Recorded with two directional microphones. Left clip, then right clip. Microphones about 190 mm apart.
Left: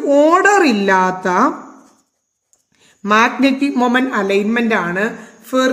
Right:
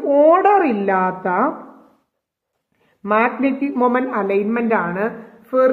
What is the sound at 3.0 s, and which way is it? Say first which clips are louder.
Speech: left 4 dB; 65° left (ahead or behind).